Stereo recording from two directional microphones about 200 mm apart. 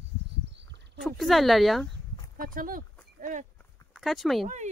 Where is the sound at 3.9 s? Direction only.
Centre (ahead or behind).